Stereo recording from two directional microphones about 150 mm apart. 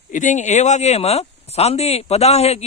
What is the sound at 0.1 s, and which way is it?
Speech, 55° left (ahead or behind).